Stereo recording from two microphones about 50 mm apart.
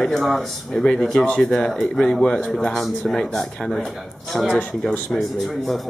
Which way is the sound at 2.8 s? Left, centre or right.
Centre.